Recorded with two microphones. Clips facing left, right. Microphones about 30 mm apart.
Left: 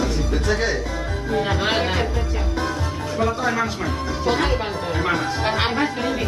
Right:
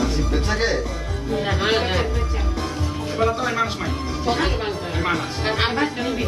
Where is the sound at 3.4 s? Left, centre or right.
Centre.